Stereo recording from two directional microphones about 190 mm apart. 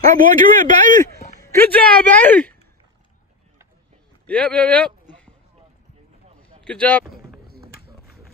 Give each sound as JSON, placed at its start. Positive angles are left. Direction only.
{"t": 0.2, "sound": "a man's voice", "side_deg": -45}
{"t": 1.4, "sound": "speech", "side_deg": 15}
{"t": 4.3, "sound": "speech", "side_deg": 5}
{"t": 6.6, "sound": "speech", "side_deg": 5}